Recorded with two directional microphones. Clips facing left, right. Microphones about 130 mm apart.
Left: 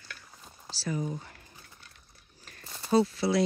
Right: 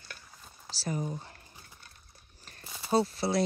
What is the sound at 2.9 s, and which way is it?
Speech, 35° right (ahead or behind).